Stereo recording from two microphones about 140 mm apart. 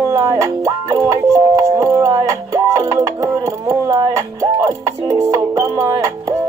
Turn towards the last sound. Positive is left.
turn(degrees=-20)  # may be behind; listen again after turning